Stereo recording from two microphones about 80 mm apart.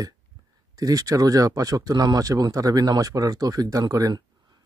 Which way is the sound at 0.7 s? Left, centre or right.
Right.